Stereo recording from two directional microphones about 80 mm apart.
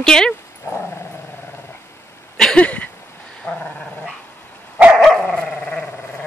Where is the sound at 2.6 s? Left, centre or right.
Centre.